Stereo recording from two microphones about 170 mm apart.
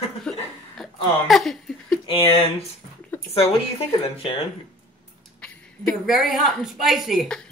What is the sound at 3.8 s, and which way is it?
Speech, 35° left (ahead or behind).